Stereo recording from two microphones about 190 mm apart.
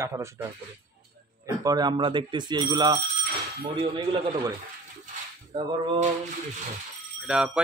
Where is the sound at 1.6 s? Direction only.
20° right (ahead or behind).